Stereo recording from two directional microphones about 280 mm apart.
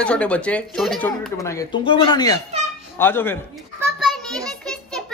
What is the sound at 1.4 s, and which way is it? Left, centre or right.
Speech, centre.